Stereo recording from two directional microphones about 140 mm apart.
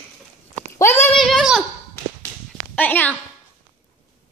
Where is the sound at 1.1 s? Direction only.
Centre (ahead or behind).